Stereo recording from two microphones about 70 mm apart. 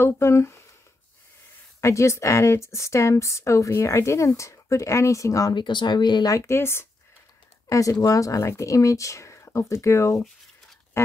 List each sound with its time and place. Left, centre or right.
0.0 s speech: left
1.8 s speech: left
5.5 s speech: left
6.3 s speech: left
7.6 s speech: left